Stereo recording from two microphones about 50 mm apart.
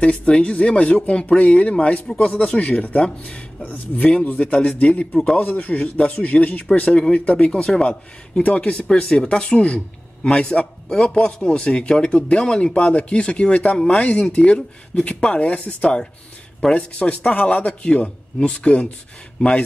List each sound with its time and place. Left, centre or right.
0.0 s speech: left
3.6 s a man's voice: left